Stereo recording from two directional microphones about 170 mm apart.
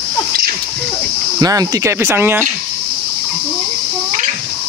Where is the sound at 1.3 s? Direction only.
20° right (ahead or behind).